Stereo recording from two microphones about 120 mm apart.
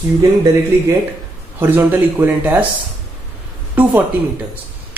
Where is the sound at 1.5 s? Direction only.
15° right (ahead or behind).